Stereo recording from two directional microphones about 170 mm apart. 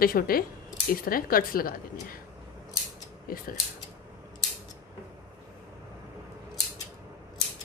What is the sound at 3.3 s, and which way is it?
Speech, 55° left (ahead or behind).